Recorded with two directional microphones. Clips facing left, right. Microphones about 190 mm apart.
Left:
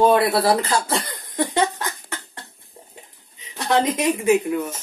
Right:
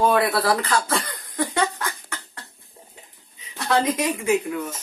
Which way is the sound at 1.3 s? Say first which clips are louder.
Left 3 dB; 25° left (ahead or behind).